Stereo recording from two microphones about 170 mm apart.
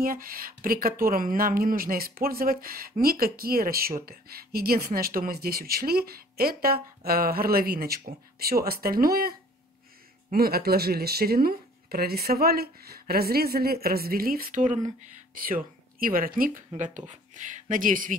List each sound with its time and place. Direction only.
0.0 s speech: 55° right (ahead or behind)
10.3 s speech: 65° right (ahead or behind)